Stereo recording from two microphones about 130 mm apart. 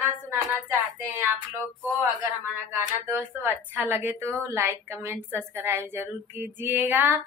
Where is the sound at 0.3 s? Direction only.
20° right (ahead or behind).